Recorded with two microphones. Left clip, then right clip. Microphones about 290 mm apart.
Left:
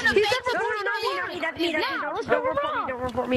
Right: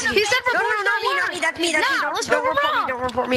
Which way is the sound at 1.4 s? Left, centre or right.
Right.